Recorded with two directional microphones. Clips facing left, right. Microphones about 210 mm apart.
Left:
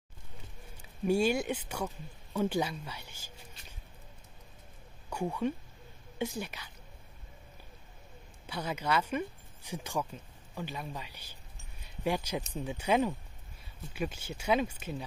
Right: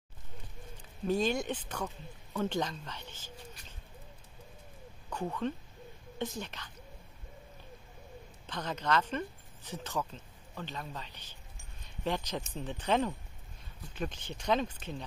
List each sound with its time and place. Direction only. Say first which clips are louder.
1.0 s speech: left 2 dB; 10° left (ahead or behind)
3.6 s a sound: even; 25° left (ahead or behind)
5.1 s speech: left 2 dB; 10° left (ahead or behind)
8.5 s speech: even; 10° left (ahead or behind)